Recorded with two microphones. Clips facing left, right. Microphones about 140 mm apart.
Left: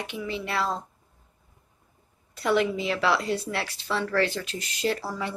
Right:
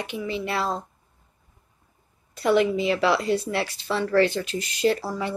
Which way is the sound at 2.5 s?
5° right (ahead or behind).